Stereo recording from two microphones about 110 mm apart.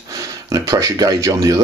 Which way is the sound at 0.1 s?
30° right (ahead or behind).